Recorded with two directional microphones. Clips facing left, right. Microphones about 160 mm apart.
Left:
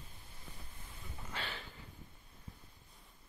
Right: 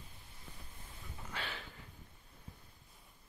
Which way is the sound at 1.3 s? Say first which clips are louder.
Even; centre (ahead or behind).